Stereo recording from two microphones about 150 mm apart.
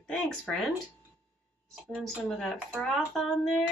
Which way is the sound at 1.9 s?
Centre (ahead or behind).